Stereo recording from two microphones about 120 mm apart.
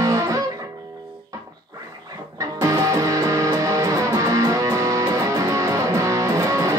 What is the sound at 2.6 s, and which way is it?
Music, 25° right (ahead or behind).